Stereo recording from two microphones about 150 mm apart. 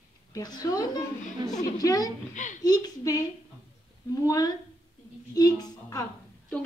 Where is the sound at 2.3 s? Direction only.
55° left (ahead or behind).